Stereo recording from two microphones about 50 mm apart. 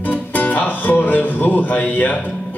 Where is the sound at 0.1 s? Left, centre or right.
Left.